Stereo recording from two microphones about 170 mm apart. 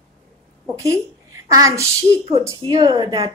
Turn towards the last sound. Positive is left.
turn(degrees=-25)  # may be behind; listen again after turning